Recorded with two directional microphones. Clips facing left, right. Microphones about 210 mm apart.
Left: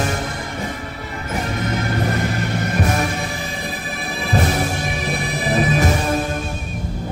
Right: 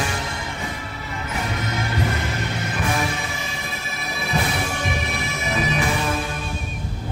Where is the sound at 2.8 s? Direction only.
40° left (ahead or behind).